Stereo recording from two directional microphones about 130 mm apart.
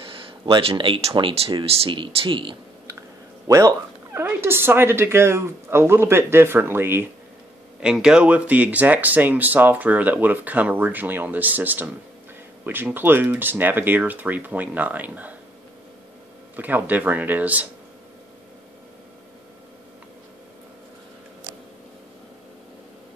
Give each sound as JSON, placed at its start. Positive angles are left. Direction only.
{"t": 0.0, "sound": "speech", "side_deg": -45}
{"t": 3.4, "sound": "speech", "side_deg": -25}
{"t": 7.8, "sound": "speech", "side_deg": -5}
{"t": 16.5, "sound": "speech", "side_deg": -15}